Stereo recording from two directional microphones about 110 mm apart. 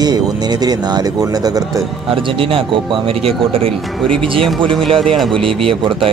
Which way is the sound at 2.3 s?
55° right (ahead or behind).